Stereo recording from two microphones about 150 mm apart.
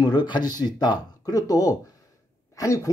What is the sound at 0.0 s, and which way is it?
Speech, 30° left (ahead or behind).